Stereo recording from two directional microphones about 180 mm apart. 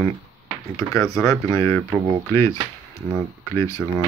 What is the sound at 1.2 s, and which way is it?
Speech, 10° left (ahead or behind).